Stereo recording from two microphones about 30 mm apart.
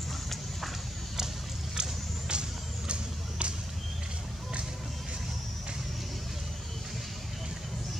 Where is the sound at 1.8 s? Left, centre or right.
Right.